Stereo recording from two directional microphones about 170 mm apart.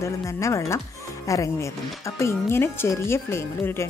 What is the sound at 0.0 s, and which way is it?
A woman's voice, 15° left (ahead or behind).